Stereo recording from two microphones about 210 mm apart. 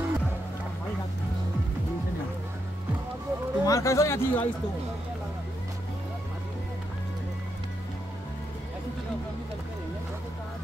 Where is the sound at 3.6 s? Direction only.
15° left (ahead or behind).